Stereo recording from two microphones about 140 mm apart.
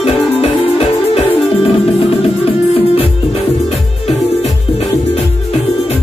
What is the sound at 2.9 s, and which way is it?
Music, 45° left (ahead or behind).